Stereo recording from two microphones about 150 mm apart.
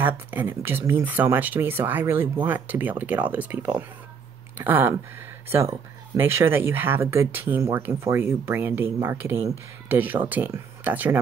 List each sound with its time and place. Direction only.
0.0 s speech: 10° right (ahead or behind)
6.1 s speech: 15° right (ahead or behind)